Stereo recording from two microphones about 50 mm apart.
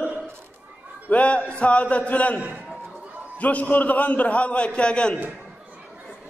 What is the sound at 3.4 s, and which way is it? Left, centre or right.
A man's voice, left.